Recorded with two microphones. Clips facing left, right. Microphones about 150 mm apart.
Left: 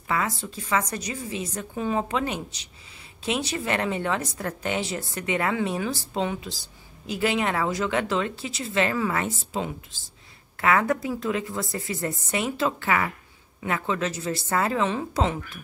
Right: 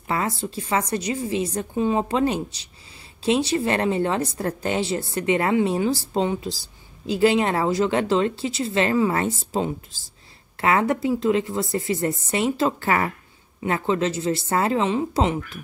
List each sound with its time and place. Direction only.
0.1 s a woman's voice: 35° right (ahead or behind)